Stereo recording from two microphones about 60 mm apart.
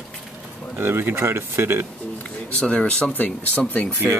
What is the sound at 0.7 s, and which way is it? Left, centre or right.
Speech, right.